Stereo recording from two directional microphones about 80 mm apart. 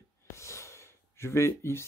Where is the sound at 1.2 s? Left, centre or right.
Left.